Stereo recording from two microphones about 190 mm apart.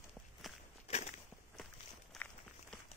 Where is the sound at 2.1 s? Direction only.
Centre (ahead or behind).